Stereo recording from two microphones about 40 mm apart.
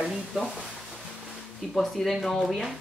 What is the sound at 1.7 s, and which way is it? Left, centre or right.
Speech, centre.